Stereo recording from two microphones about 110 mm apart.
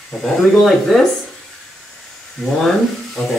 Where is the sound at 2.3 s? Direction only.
Centre (ahead or behind).